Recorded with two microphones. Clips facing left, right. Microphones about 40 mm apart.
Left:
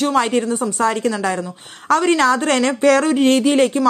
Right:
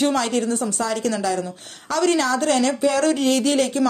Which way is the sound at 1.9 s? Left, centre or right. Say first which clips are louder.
Left 5 dB; left.